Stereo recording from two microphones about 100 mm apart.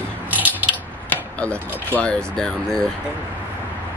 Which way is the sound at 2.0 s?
10° left (ahead or behind).